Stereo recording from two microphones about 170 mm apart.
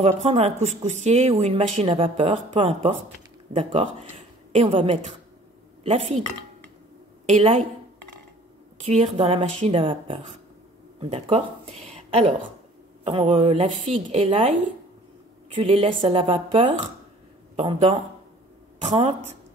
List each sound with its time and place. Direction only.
0.0 s a woman's voice: 40° right (ahead or behind)
7.2 s speech: 40° right (ahead or behind)
8.8 s a woman's voice: 40° right (ahead or behind)